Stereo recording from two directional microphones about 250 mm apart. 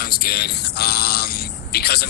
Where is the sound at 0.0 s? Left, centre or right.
Left.